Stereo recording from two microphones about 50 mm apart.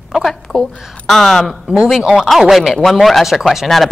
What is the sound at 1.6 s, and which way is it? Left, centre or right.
Speech, centre.